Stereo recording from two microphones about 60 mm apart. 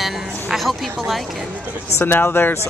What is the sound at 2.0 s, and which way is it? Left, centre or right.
Speech, left.